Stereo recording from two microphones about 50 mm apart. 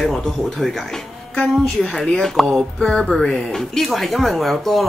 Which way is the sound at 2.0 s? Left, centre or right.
Centre.